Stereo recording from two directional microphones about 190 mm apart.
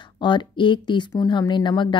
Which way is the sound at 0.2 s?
25° left (ahead or behind).